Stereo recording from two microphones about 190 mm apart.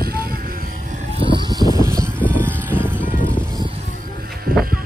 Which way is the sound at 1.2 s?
25° right (ahead or behind).